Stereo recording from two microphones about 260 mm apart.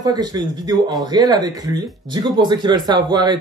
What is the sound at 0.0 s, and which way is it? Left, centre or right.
Speech, centre.